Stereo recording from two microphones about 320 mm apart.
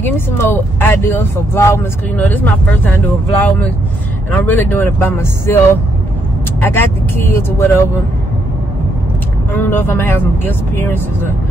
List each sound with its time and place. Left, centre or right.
0.0 s speech: centre
6.6 s speech: centre
9.5 s speech: centre